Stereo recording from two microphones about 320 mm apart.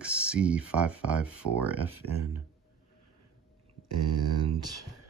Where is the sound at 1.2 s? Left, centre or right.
Right.